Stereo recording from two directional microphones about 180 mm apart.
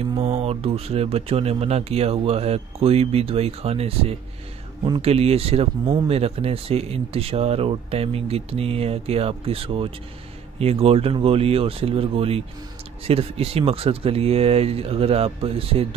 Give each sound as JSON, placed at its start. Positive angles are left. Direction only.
{"t": 0.1, "sound": "speech", "side_deg": -35}